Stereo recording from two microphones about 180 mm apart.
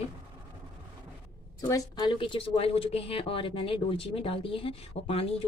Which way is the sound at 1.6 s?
20° left (ahead or behind).